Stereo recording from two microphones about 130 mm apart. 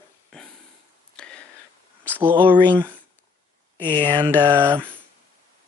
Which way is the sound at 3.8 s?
40° right (ahead or behind).